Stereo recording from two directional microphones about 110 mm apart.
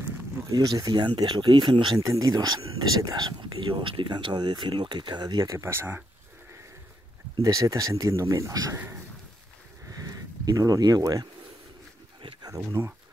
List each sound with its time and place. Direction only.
0.0 s speech: 35° right (ahead or behind)
2.0 s speech: 35° right (ahead or behind)
7.4 s speech: 30° right (ahead or behind)
10.4 s speech: 30° right (ahead or behind)
12.4 s speech: 30° right (ahead or behind)